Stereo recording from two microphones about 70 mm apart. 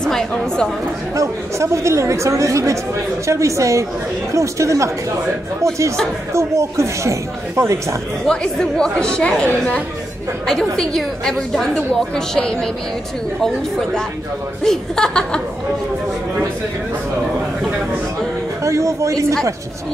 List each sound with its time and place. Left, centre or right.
0.0 s a woman's voice: centre
1.1 s speech: right
6.3 s speech: right
8.3 s a woman's voice: centre
18.6 s speech: right